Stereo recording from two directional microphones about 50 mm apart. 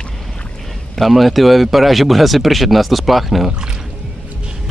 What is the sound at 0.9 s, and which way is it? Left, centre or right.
Speech, centre.